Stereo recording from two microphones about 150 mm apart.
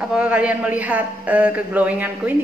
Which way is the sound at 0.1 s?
10° right (ahead or behind).